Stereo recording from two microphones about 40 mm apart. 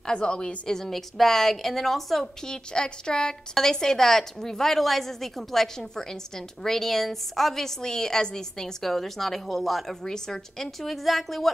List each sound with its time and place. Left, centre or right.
0.0 s a woman's voice: left
0.7 s a woman's voice: centre
2.4 s a woman's voice: centre
8.8 s a woman's voice: centre
10.0 s a woman's voice: centre
10.8 s a woman's voice: centre